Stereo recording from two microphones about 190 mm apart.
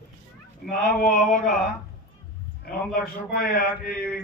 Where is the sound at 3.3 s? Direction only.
50° left (ahead or behind).